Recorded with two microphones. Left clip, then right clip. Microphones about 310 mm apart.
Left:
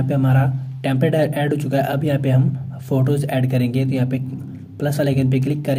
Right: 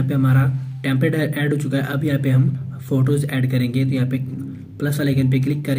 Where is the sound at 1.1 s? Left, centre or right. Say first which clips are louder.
Left 4 dB; left.